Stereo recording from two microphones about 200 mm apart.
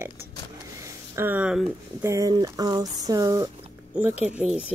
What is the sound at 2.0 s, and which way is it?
A woman's voice, 15° right (ahead or behind).